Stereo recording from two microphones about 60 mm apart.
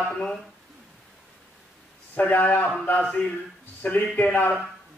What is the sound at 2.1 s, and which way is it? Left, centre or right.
Speech, left.